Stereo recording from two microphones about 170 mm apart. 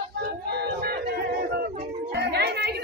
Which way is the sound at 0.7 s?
65° right (ahead or behind).